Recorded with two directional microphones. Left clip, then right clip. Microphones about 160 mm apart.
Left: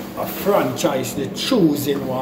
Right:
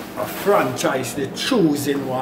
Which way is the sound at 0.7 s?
15° right (ahead or behind).